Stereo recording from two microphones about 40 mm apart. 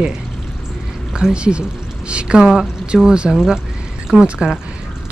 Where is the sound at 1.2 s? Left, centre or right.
Right.